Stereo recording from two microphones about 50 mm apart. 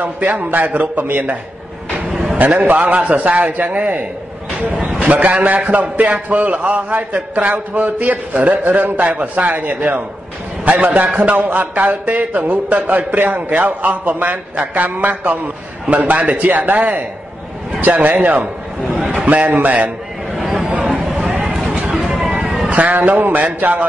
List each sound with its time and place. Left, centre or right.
0.0 s a man's voice: right
2.3 s a man's voice: right
20.3 s a sound: centre
20.6 s a sound: right
22.0 s vehicle: centre
22.7 s a man's voice: right